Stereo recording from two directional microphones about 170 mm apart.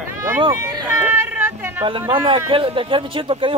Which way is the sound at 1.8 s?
30° right (ahead or behind).